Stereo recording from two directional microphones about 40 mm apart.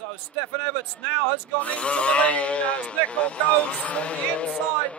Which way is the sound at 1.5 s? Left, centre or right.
Left.